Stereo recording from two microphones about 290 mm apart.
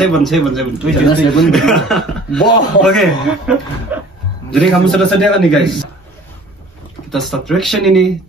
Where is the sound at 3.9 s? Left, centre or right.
Centre.